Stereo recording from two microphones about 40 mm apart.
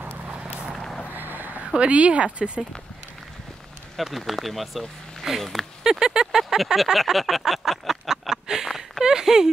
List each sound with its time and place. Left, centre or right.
0.0 s vehicle: right
0.3 s vehicle: right
0.7 s vehicle: centre
1.1 s a sound: right
1.8 s speech: right
4.0 s speech: centre
5.9 s a sound: centre